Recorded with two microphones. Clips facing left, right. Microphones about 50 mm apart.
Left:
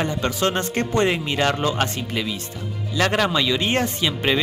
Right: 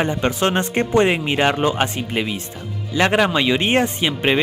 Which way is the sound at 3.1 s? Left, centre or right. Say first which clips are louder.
Right 4 dB; centre.